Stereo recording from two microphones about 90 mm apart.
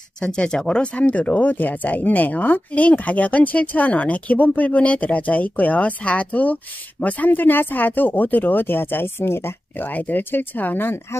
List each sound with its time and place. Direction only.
0.2 s speech: 5° left (ahead or behind); by 11.1 s 20° left (ahead or behind)